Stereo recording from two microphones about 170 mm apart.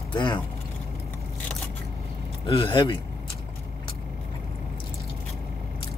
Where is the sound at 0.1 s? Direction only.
30° left (ahead or behind).